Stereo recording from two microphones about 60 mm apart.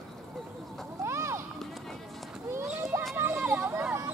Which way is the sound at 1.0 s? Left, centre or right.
Right.